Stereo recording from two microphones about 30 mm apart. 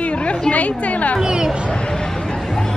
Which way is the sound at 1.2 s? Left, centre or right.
Right.